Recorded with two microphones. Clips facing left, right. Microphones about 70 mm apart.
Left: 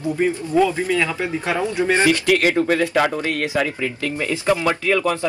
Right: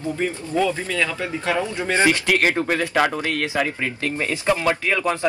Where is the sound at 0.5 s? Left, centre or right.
Centre.